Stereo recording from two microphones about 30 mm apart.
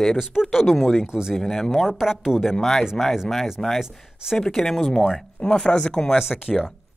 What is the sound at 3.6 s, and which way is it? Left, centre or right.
Speech, centre.